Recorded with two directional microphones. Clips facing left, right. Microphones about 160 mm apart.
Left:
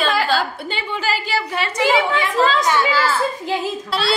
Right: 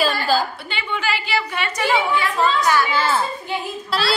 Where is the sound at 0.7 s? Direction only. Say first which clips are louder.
Left 2 dB; 40° left (ahead or behind).